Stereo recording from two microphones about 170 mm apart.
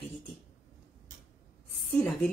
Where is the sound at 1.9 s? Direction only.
5° left (ahead or behind).